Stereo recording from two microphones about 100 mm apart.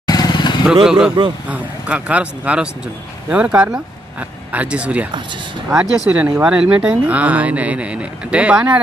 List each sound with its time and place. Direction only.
0.0 s vehicle: 40° left (ahead or behind)
0.8 s speech: 5° right (ahead or behind)